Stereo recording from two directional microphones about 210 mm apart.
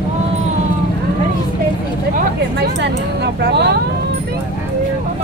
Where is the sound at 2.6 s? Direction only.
55° right (ahead or behind).